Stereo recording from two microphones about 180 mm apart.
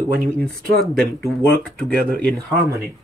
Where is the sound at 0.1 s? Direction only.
55° right (ahead or behind).